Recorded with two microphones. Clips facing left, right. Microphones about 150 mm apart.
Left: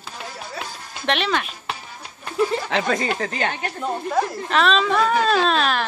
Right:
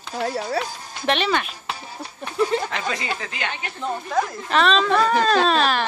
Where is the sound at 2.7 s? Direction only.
50° left (ahead or behind).